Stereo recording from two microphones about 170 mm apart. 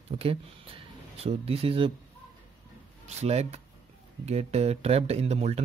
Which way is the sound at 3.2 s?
40° right (ahead or behind).